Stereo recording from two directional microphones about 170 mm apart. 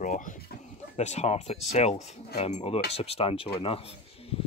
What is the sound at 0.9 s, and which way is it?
Speech, 40° left (ahead or behind).